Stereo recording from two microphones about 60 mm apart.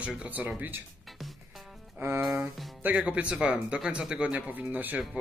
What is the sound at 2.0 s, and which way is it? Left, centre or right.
Music, right.